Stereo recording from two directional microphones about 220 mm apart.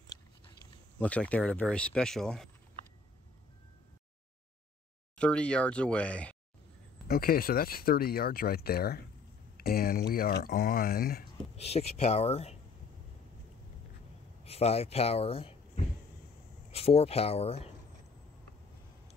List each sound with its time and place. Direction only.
0.9 s speech: 5° left (ahead or behind)
5.1 s speech: 5° left (ahead or behind)
7.1 s speech: 40° left (ahead or behind)
11.5 s speech: 30° left (ahead or behind)
14.4 s speech: 30° left (ahead or behind)